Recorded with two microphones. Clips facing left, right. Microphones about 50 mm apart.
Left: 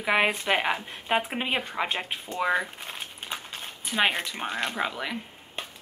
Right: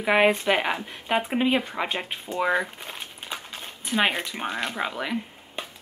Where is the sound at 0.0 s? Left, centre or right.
Centre.